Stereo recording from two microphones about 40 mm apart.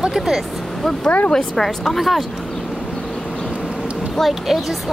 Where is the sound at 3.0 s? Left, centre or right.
Centre.